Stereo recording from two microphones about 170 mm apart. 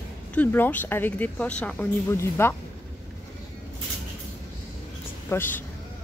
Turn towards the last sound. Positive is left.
turn(degrees=10)  # may be behind; listen again after turning